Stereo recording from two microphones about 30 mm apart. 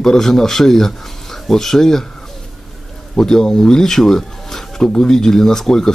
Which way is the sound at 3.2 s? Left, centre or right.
Centre.